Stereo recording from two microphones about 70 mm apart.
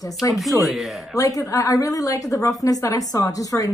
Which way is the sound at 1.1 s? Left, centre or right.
Left.